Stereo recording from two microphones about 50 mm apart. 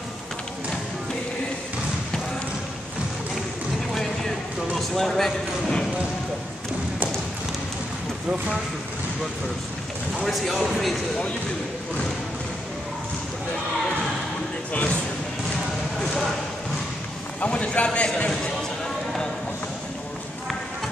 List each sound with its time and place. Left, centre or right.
3.9 s a sound: centre
4.7 s a man's voice: centre
10.2 s speech: centre
14.7 s speech: left
16.0 s speech: centre
17.4 s speech: left